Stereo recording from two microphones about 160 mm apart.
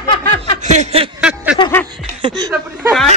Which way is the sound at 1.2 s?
5° right (ahead or behind).